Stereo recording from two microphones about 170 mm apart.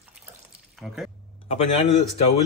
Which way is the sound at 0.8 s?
Centre (ahead or behind).